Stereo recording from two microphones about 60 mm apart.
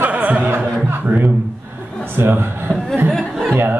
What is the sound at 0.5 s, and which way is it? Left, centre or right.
Music, right.